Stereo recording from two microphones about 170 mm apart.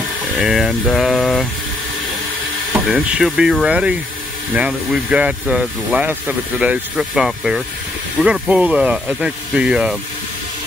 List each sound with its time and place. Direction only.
0.4 s speech: centre (ahead or behind)
2.9 s speech: centre (ahead or behind)